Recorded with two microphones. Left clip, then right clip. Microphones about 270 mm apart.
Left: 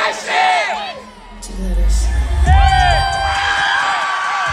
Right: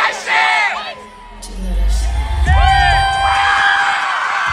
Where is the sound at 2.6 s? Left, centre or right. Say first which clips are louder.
Right 2 dB; centre.